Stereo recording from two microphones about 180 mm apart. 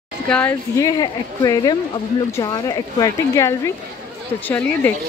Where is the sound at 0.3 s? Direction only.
10° left (ahead or behind).